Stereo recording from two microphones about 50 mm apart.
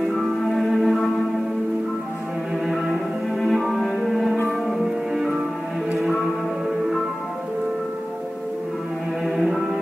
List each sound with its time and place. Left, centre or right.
0.1 s music: centre
2.6 s cello: centre
3.3 s music: centre
9.2 s music: centre